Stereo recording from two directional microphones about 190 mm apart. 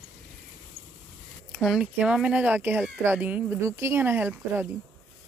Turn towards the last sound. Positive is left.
turn(degrees=-10)  # may be behind; listen again after turning